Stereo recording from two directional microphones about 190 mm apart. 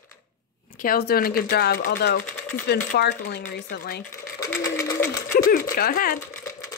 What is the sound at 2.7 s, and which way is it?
Speech, 60° left (ahead or behind).